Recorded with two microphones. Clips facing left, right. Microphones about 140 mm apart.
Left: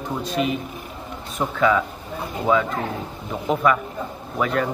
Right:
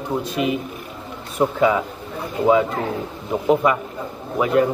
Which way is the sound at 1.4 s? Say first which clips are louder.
Right 2 dB; 20° right (ahead or behind).